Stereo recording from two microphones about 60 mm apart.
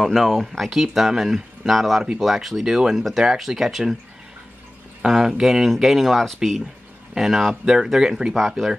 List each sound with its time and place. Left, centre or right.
0.0 s speech: centre
5.0 s speech: centre